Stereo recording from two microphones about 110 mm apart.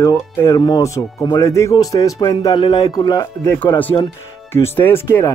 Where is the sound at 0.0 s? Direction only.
30° left (ahead or behind).